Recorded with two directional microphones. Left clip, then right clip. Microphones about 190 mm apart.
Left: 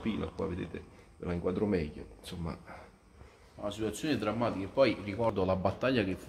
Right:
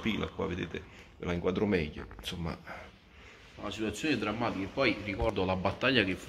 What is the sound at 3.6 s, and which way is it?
Speech, 65° left (ahead or behind).